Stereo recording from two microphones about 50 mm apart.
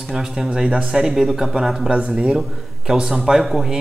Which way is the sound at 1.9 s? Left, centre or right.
Right.